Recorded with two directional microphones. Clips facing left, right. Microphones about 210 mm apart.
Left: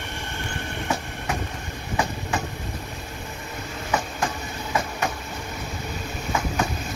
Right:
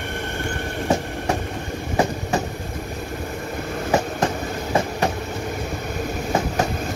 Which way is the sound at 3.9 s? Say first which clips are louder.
Right 6 dB; 40° right (ahead or behind).